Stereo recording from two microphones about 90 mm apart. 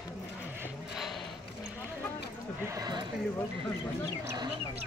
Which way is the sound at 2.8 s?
50° right (ahead or behind).